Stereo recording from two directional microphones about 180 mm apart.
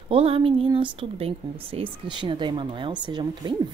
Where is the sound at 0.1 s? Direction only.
30° right (ahead or behind).